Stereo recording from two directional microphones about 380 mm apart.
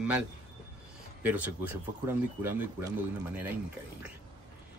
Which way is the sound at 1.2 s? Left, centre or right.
Centre.